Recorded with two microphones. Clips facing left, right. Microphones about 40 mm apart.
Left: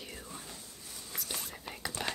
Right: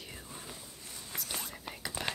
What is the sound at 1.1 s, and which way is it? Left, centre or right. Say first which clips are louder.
Whispering: even; centre.